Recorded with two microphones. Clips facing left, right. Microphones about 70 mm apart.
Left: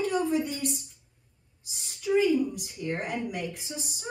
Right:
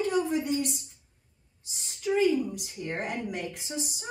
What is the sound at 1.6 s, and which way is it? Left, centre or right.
A woman's voice, right.